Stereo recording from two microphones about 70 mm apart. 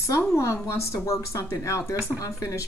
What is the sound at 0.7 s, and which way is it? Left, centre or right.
Speech, left.